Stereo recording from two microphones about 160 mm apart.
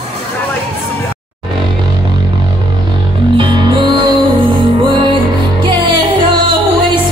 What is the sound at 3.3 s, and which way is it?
Music, 30° right (ahead or behind).